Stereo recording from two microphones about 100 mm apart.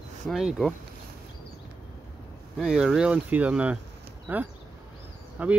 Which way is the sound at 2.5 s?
5° right (ahead or behind).